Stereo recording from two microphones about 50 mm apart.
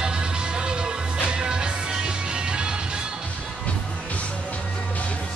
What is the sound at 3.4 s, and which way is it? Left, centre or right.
Music, left.